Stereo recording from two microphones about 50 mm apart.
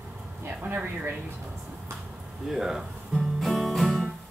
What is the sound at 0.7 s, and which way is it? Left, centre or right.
Speech, right.